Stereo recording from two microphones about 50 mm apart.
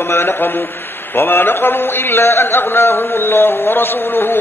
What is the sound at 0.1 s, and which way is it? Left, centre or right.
A man's voice, left.